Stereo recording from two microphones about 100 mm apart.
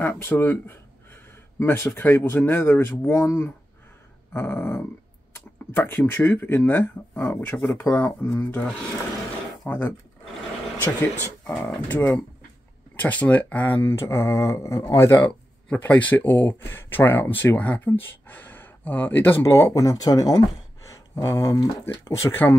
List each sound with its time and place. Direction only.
0.0 s speech: 20° left (ahead or behind)
9.7 s speech: 15° left (ahead or behind)
15.7 s speech: 15° left (ahead or behind)